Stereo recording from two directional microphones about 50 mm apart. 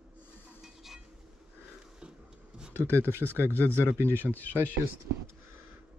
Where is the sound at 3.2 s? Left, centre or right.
Left.